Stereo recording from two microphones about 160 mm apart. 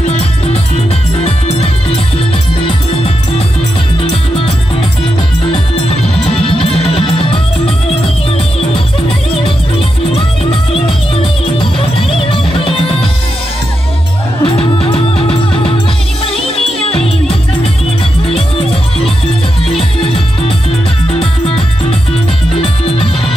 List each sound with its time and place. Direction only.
1.2 s music: 40° left (ahead or behind)
5.8 s music: 35° left (ahead or behind)
12.0 s music: 35° left (ahead or behind)
14.4 s music: 35° left (ahead or behind)
21.2 s music: 35° left (ahead or behind)